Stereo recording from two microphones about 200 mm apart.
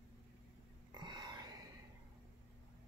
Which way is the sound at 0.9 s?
20° right (ahead or behind).